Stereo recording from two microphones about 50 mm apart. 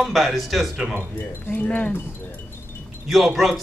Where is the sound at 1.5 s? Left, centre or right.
Left.